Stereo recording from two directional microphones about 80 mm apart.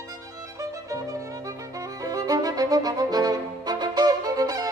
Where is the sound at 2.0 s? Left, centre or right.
Right.